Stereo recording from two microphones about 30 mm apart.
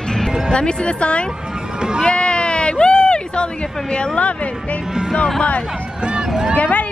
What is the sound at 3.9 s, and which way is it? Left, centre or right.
Speech, left.